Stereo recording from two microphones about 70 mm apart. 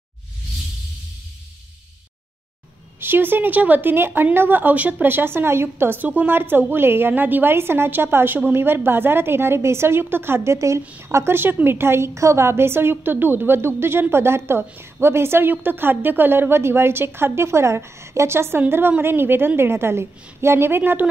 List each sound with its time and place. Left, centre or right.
3.0 s speech: right